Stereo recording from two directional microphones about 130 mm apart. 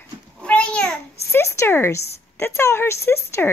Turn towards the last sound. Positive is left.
turn(degrees=20)  # may be behind; listen again after turning